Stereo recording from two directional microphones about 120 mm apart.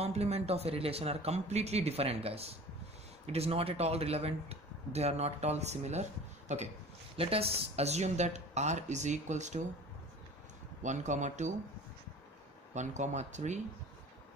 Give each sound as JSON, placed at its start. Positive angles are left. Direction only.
{"t": 0.0, "sound": "speech", "side_deg": -60}
{"t": 7.2, "sound": "speech", "side_deg": -55}
{"t": 10.8, "sound": "a man's voice", "side_deg": -85}
{"t": 12.7, "sound": "speech", "side_deg": -80}